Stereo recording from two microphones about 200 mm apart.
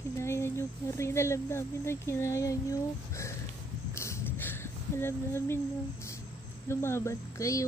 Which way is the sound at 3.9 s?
15° left (ahead or behind).